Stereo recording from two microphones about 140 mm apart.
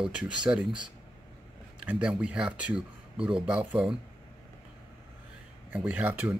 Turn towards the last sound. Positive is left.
turn(degrees=-10)  # may be behind; listen again after turning